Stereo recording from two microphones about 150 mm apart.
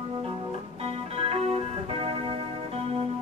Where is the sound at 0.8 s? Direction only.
40° right (ahead or behind).